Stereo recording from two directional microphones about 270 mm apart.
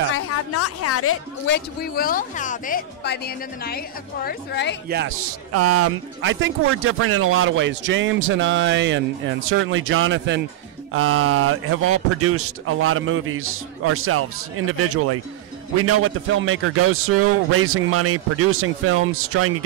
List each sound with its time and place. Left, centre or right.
0.1 s a sound: left
1.5 s speech: left
4.8 s speech: right
5.2 s speech: right
6.2 s a man's voice: right